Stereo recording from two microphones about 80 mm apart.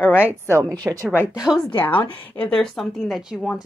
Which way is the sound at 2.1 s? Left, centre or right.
Centre.